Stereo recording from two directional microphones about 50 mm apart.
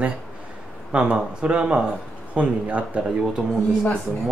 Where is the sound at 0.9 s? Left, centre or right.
Right.